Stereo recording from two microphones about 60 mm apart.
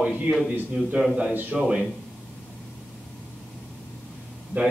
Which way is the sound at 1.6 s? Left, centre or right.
Centre.